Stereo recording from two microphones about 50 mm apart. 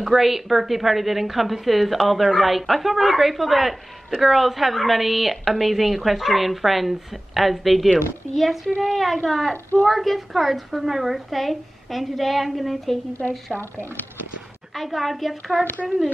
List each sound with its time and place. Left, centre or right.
0.0 s a woman's voice: centre
14.7 s a woman's voice: centre